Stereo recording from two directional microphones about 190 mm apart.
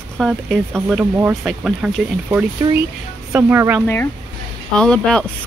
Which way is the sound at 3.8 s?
10° left (ahead or behind).